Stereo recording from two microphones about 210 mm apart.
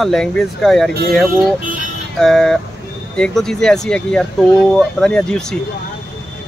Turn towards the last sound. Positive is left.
turn(degrees=5)  # may be behind; listen again after turning